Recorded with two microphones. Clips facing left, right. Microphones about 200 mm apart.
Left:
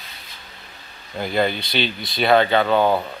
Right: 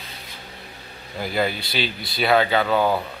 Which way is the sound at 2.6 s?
25° left (ahead or behind).